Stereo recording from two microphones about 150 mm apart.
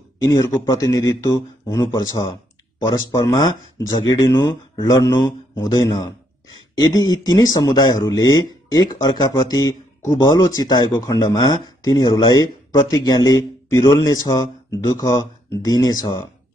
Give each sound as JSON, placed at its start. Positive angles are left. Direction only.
{"t": 0.2, "sound": "speech", "side_deg": 20}